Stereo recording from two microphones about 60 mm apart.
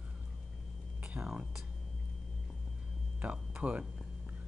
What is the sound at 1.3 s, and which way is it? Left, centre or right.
Speech, centre.